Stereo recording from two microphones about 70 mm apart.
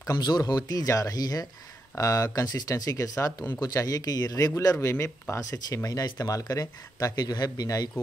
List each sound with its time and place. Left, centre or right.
0.5 s speech: left
4.8 s speech: left
5.4 s speech: left